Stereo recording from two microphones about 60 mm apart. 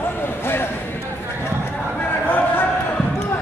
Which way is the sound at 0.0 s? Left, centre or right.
Left.